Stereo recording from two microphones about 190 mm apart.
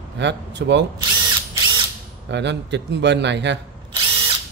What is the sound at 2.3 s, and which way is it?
A man's voice, 65° right (ahead or behind).